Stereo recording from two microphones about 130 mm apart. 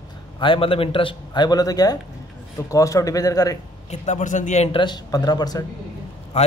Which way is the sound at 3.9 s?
70° left (ahead or behind).